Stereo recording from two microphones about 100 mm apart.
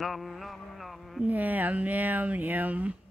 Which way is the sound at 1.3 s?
15° right (ahead or behind).